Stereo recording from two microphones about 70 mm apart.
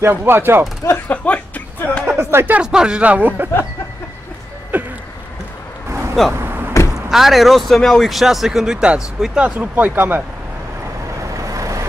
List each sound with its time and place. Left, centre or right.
0.0 s speech: right
1.0 s music: left
2.0 s a sound: right
2.6 s speech: centre
4.7 s a sound: right
5.9 s vehicle: right
7.1 s a man's voice: centre
9.4 s speech: right
11.3 s vehicle: right